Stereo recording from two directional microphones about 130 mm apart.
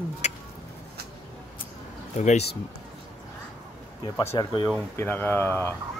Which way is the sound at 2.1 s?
60° left (ahead or behind).